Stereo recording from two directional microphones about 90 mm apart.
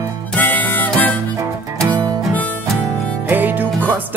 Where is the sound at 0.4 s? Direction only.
20° left (ahead or behind).